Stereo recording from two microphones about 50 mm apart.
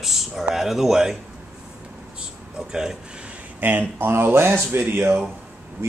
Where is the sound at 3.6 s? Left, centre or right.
Right.